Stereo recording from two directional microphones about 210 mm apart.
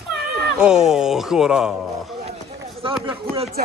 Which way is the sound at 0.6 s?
5° right (ahead or behind).